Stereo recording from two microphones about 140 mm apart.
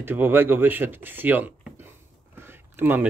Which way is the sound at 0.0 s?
15° right (ahead or behind).